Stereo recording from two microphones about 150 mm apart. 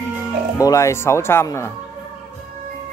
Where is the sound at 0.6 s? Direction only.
20° left (ahead or behind).